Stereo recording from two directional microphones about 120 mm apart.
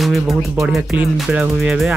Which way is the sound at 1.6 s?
5° right (ahead or behind).